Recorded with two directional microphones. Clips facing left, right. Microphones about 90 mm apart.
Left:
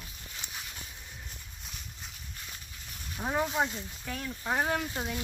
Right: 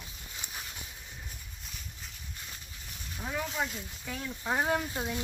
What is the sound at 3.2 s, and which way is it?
Speech, 35° left (ahead or behind).